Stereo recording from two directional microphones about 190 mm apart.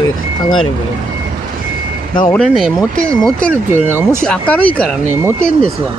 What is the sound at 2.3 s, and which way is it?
Speech, 5° left (ahead or behind).